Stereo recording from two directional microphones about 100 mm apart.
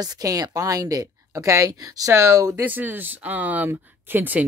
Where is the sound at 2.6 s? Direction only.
20° right (ahead or behind).